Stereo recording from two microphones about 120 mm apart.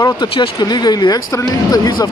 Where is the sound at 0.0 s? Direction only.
35° left (ahead or behind).